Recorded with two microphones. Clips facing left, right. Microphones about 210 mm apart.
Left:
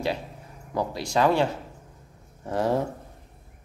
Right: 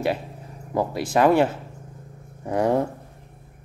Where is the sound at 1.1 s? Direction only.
55° right (ahead or behind).